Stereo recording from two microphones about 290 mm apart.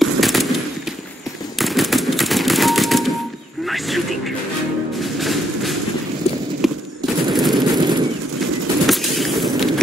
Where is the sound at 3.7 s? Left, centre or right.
Centre.